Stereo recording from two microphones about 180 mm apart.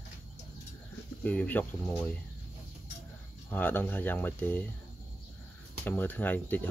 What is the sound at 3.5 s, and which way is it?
Speech, 10° left (ahead or behind).